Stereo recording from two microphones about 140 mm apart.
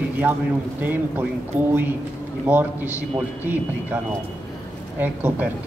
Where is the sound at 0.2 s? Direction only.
15° right (ahead or behind).